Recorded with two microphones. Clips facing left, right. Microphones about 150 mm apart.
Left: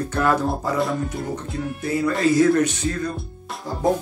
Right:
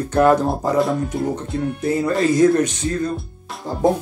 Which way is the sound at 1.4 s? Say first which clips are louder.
Right 5 dB; centre (ahead or behind).